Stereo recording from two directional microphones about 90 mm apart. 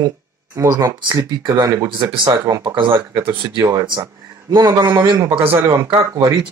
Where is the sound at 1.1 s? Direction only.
55° right (ahead or behind).